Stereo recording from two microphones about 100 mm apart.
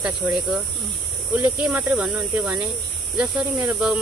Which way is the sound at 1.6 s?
15° right (ahead or behind).